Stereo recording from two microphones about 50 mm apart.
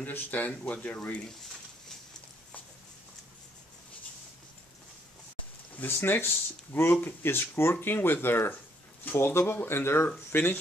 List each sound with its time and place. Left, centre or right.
0.0 s speech: left
5.8 s speech: left